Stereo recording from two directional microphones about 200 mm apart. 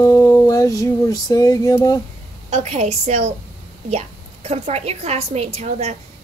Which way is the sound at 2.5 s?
35° right (ahead or behind).